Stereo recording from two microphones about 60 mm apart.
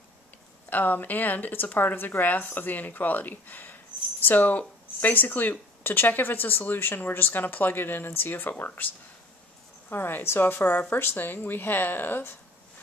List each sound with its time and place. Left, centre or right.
0.7 s speech: left